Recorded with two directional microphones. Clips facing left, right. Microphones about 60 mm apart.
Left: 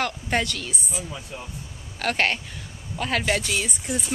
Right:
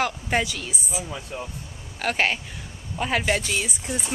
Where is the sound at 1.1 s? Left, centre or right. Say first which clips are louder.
Right 3 dB; centre.